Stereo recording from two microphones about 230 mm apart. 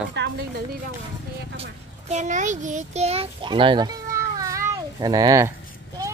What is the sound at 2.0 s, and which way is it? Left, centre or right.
A child's voice, right.